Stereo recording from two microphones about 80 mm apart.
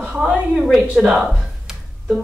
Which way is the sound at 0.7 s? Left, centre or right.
Centre.